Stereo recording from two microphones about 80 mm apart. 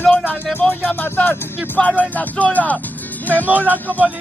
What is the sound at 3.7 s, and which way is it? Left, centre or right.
Speech, centre.